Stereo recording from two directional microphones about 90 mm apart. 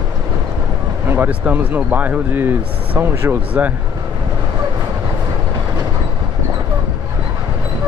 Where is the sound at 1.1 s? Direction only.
20° right (ahead or behind).